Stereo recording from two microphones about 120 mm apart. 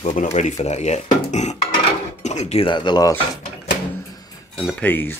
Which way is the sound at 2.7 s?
40° left (ahead or behind).